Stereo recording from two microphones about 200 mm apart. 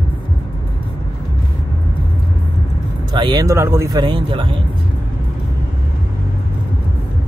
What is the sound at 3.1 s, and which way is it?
Speech, 20° right (ahead or behind).